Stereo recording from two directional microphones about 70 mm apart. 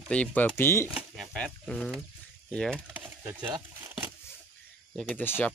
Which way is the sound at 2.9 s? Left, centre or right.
Right.